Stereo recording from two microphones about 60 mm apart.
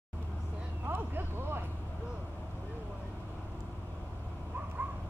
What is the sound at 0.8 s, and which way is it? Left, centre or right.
Vehicle, right.